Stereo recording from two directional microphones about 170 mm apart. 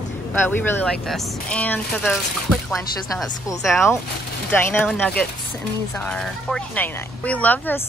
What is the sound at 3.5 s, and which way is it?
Speech, 15° left (ahead or behind).